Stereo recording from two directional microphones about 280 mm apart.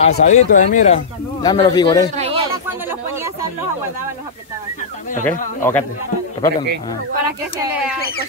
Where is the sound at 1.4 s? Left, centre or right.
Centre.